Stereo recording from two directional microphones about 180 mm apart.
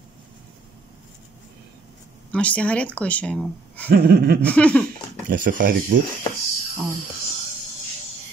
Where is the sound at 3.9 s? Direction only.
60° right (ahead or behind).